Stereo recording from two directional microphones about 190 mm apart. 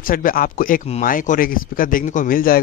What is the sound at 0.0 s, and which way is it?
Speech, 45° left (ahead or behind).